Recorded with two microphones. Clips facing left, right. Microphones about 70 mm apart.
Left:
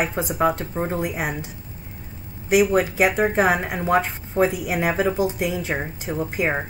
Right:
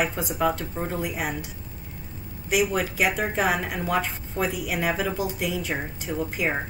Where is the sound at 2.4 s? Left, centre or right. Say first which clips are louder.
Left 6 dB; left.